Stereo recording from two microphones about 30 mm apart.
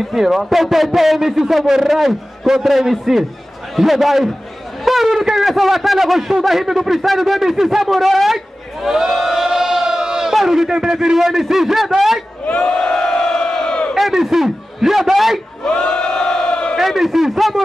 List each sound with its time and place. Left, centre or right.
0.1 s a man's voice: centre
9.4 s chant: centre
10.3 s a man's voice: centre
12.8 s crowd: left
13.9 s a man's voice: centre
15.6 s crowd: left
16.7 s a man's voice: centre